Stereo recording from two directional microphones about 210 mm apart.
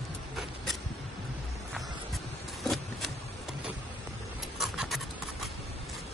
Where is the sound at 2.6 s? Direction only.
Centre (ahead or behind).